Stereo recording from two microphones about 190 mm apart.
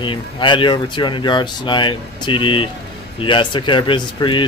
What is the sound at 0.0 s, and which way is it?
Speech, 25° left (ahead or behind).